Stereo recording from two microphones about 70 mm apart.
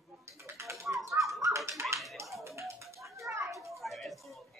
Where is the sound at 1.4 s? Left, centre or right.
Right.